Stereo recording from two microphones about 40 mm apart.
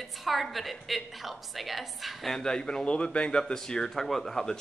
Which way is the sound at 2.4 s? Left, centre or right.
Centre.